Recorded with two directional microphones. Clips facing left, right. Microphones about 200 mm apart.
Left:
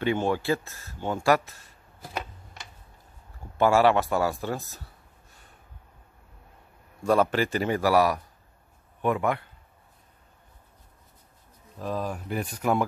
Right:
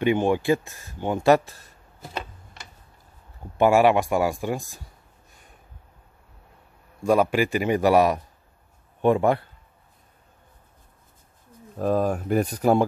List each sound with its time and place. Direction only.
0.0 s speech: 15° right (ahead or behind); by 1.7 s 30° right (ahead or behind)
3.5 s speech: 15° right (ahead or behind)
7.1 s speech: 10° right (ahead or behind); by 9.5 s 30° right (ahead or behind)
11.8 s speech: 50° right (ahead or behind)